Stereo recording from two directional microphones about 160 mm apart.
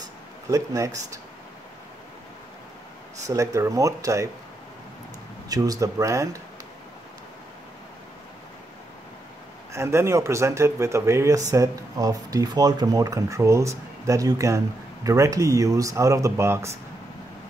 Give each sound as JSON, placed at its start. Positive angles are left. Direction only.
{"t": 0.5, "sound": "speech", "side_deg": -20}
{"t": 3.3, "sound": "speech", "side_deg": -20}
{"t": 5.5, "sound": "speech", "side_deg": -20}
{"t": 9.7, "sound": "speech", "side_deg": -15}